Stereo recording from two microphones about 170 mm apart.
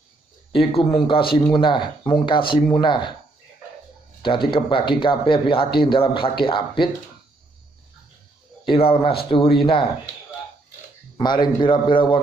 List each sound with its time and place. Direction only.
0.5 s speech: 30° left (ahead or behind)
4.5 s speech: 30° left (ahead or behind)
8.6 s speech: 30° left (ahead or behind)
11.1 s speech: 25° left (ahead or behind)